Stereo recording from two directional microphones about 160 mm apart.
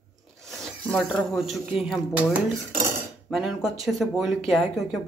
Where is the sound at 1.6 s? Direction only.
5° right (ahead or behind).